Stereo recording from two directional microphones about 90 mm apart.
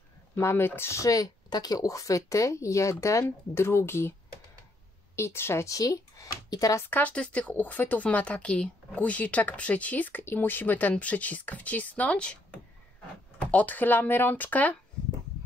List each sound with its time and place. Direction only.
0.4 s speech: 30° left (ahead or behind)
5.1 s speech: 30° left (ahead or behind)
6.9 s speech: 15° left (ahead or behind)
13.5 s speech: 15° left (ahead or behind)